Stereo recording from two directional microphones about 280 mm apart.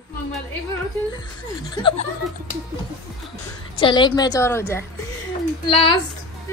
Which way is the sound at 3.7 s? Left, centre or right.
Centre.